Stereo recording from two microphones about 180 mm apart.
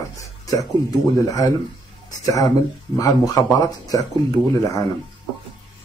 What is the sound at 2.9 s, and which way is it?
Speech, 20° left (ahead or behind).